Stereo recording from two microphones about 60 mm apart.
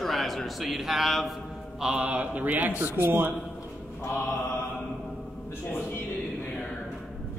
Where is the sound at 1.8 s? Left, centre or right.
Right.